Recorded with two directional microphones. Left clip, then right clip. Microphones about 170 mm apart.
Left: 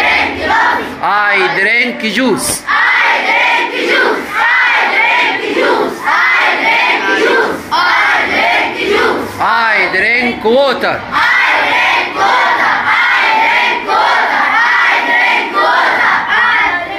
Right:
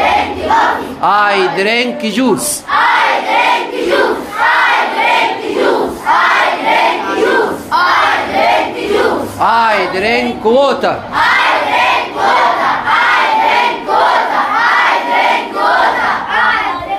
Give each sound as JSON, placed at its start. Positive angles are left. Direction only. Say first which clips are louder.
{"t": 1.0, "sound": "speech", "louder": "right 1 dB", "side_deg": -15}
{"t": 9.4, "sound": "speech", "louder": "right 1 dB", "side_deg": -10}